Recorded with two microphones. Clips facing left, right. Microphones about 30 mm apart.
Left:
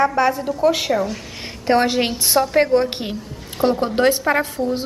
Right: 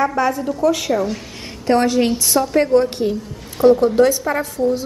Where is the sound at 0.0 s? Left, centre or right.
Left.